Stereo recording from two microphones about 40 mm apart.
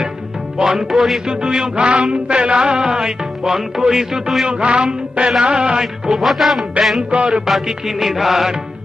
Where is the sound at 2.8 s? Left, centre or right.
Centre.